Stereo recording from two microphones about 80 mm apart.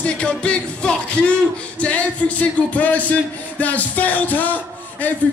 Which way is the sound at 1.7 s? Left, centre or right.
Centre.